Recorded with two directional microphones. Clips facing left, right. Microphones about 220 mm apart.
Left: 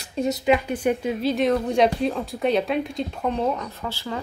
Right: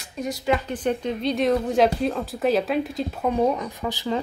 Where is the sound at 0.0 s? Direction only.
25° left (ahead or behind).